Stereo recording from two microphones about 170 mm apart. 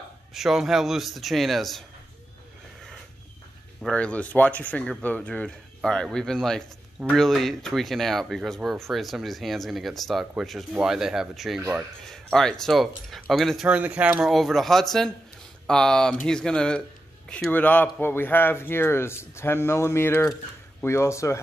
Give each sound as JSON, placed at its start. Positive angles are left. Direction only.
{"t": 0.3, "sound": "speech", "side_deg": 0}
{"t": 3.8, "sound": "a man's voice", "side_deg": 5}